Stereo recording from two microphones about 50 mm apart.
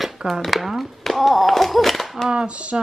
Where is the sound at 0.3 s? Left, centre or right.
Centre.